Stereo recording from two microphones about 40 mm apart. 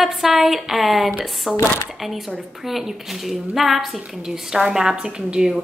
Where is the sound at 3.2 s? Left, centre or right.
Centre.